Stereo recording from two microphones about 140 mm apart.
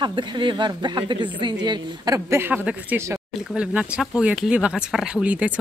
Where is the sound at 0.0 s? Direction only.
35° right (ahead or behind).